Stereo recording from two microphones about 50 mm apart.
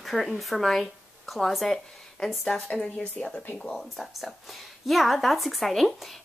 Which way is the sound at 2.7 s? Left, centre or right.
Left.